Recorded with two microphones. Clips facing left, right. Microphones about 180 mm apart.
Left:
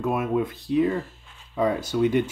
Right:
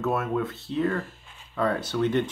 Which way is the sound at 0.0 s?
15° left (ahead or behind).